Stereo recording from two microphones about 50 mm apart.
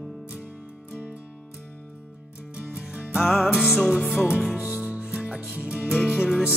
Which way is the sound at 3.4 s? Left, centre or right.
Centre.